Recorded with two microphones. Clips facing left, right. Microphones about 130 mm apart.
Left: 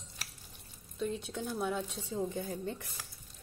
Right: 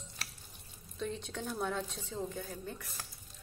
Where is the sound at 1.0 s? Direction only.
5° left (ahead or behind).